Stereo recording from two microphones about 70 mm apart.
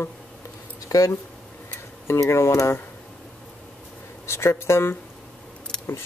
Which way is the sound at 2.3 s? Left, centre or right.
Left.